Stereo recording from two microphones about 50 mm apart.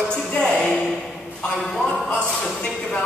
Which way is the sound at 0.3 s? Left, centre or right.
Centre.